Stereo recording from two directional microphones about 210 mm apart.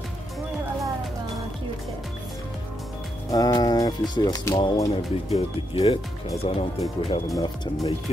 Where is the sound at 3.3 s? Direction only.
20° left (ahead or behind).